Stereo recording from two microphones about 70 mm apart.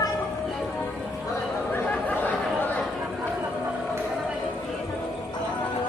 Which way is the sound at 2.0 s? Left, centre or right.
Left.